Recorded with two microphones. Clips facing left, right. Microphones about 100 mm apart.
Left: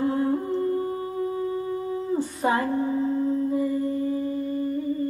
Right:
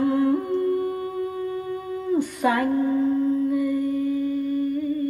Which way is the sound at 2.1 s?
30° left (ahead or behind).